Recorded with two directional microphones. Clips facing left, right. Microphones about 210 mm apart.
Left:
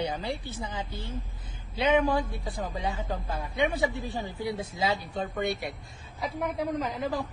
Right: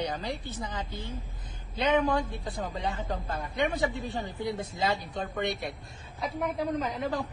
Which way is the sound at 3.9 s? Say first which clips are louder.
Even; 15° right (ahead or behind).